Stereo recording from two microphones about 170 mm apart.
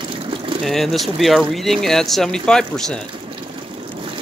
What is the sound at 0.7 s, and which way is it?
Speech, centre (ahead or behind).